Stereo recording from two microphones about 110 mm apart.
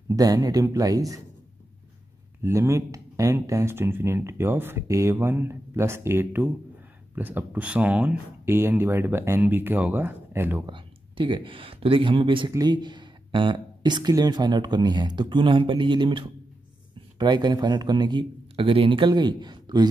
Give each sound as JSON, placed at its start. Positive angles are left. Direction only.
{"t": 0.1, "sound": "speech", "side_deg": -35}
{"t": 2.4, "sound": "speech", "side_deg": -25}
{"t": 10.7, "sound": "speech", "side_deg": -45}
{"t": 12.5, "sound": "speech", "side_deg": -40}